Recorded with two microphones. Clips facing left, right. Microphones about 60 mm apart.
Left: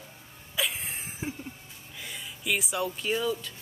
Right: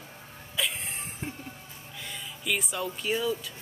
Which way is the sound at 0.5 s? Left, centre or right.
Centre.